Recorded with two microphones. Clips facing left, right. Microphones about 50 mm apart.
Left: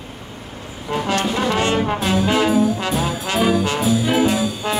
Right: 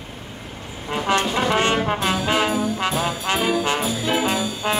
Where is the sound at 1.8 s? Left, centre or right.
Centre.